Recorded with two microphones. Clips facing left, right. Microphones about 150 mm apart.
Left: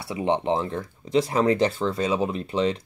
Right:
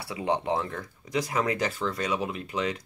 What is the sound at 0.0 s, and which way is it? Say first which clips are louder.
Speech: left 4 dB; 25° left (ahead or behind).